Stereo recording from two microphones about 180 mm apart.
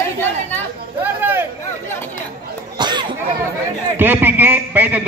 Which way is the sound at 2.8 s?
25° right (ahead or behind).